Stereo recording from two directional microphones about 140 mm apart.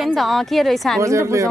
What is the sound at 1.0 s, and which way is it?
Speech, 20° right (ahead or behind).